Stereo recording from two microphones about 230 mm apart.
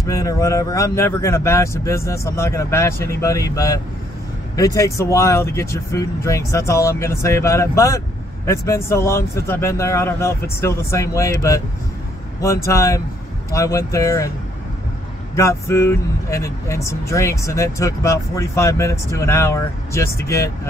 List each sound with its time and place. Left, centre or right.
0.0 s speech: centre
15.3 s speech: centre